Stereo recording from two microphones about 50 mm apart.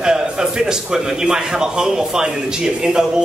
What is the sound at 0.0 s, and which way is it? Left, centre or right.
A man's voice, centre.